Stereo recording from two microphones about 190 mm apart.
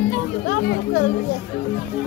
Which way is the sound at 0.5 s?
75° left (ahead or behind).